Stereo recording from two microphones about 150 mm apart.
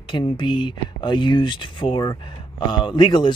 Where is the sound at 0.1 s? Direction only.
35° left (ahead or behind).